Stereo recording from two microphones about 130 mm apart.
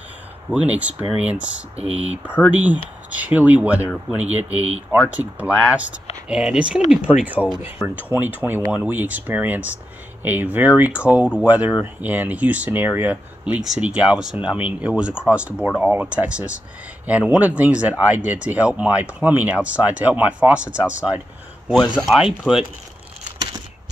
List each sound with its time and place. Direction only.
0.5 s speech: 10° right (ahead or behind)
4.4 s speech: 55° right (ahead or behind)
5.4 s speech: 10° right (ahead or behind)